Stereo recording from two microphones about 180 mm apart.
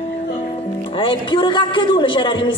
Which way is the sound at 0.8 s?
30° left (ahead or behind).